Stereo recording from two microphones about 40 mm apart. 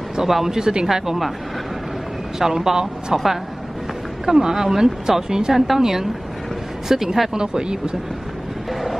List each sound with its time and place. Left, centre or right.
0.2 s speech: centre
2.3 s speech: centre
4.3 s speech: centre